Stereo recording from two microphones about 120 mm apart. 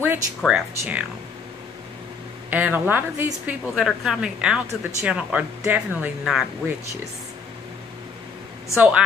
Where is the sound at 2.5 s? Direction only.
15° right (ahead or behind).